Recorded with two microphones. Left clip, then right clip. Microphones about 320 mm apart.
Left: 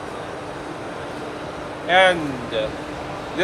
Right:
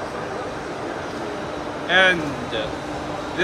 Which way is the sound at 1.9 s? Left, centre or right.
Centre.